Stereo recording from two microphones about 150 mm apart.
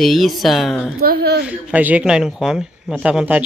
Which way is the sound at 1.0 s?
90° right.